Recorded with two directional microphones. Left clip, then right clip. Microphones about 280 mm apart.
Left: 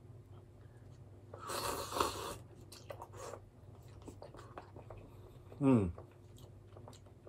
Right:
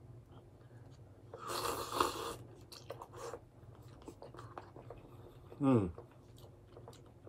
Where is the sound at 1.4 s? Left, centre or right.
Centre.